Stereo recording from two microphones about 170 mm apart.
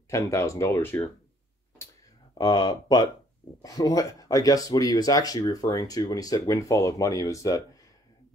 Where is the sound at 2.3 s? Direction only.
20° left (ahead or behind).